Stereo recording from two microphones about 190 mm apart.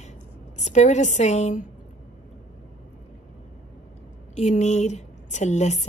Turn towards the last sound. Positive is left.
turn(degrees=35)  # may be behind; listen again after turning